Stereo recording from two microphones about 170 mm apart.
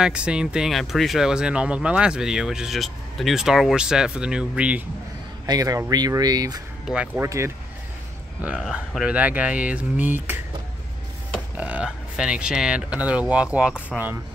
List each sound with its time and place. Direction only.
0.0 s speech: 5° right (ahead or behind)
5.5 s speech: 20° right (ahead or behind)
6.9 s speech: 5° right (ahead or behind)
7.2 s speech: 15° right (ahead or behind)
11.5 s speech: 10° right (ahead or behind)